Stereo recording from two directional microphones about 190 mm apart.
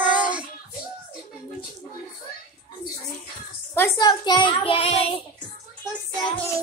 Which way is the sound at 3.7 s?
15° left (ahead or behind).